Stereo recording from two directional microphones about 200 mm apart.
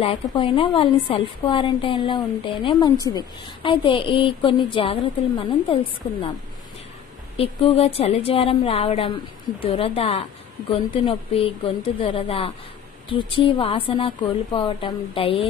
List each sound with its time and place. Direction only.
0.0 s a woman's voice: 25° left (ahead or behind)
7.3 s a woman's voice: 30° left (ahead or behind)